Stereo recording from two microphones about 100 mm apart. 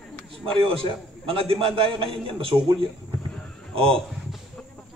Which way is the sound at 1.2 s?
65° right (ahead or behind).